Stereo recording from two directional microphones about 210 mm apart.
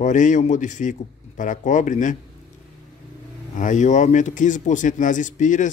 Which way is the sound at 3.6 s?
35° left (ahead or behind).